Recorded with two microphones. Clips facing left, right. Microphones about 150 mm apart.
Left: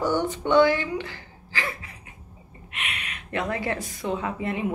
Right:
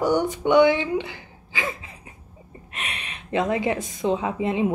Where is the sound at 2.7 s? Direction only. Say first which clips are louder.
Right 1 dB; 35° right (ahead or behind).